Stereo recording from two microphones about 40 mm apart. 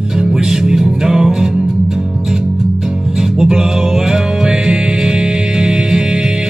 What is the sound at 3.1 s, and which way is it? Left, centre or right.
Music, centre.